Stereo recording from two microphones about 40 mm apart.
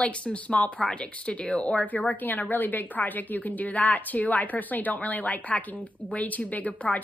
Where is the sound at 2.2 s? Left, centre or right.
Left.